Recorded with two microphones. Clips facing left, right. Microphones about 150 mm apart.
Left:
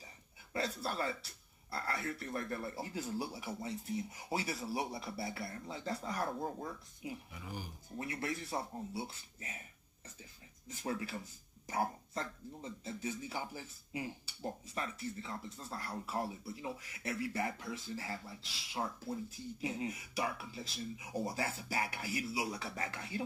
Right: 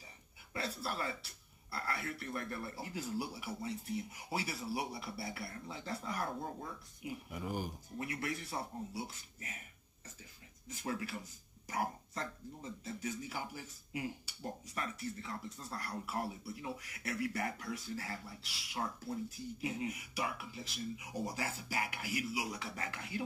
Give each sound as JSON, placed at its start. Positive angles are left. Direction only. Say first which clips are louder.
{"t": 0.5, "sound": "speech", "louder": "left 2 dB", "side_deg": 30}
{"t": 7.4, "sound": "speech", "louder": "right 7 dB", "side_deg": -50}
{"t": 8.0, "sound": "speech", "louder": "left 1 dB", "side_deg": 30}
{"t": 10.8, "sound": "speech", "louder": "left 1 dB", "side_deg": 30}